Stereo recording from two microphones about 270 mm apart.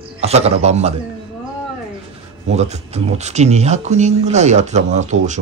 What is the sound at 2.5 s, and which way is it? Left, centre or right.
Speech, right.